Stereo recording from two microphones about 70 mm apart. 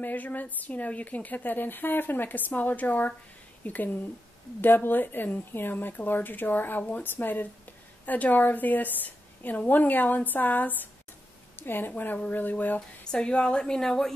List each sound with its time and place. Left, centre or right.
0.0 s a woman's voice: left
13.1 s a woman's voice: centre